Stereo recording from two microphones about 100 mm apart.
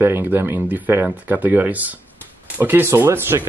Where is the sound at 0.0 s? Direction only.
20° right (ahead or behind).